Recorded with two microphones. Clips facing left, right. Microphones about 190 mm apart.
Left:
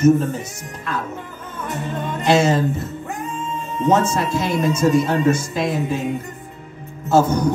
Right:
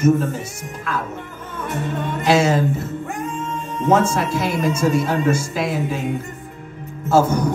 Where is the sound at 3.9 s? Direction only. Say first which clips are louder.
Right 1 dB; 10° right (ahead or behind).